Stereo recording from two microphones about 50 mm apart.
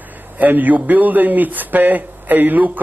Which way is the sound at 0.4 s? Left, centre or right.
Right.